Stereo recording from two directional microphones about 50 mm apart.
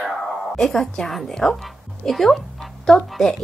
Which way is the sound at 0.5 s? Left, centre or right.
Centre.